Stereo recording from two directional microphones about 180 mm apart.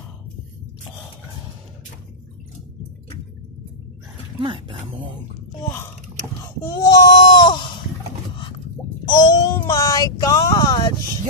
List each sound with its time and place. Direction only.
4.4 s speech: 25° right (ahead or behind)
6.7 s a sound: 20° left (ahead or behind)
9.0 s child singing: 20° left (ahead or behind)